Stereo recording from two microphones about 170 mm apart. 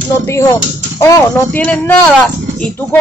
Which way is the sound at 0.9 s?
15° left (ahead or behind).